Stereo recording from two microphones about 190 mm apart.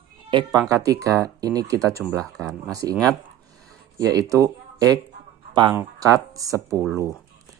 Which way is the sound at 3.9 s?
20° right (ahead or behind).